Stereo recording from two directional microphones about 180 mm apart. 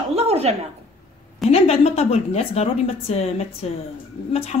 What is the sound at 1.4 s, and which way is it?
A woman's voice, 35° left (ahead or behind).